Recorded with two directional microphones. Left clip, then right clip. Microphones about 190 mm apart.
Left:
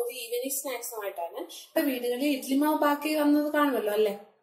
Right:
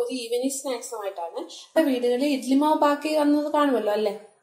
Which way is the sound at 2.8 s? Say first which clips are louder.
Right 4 dB; 20° right (ahead or behind).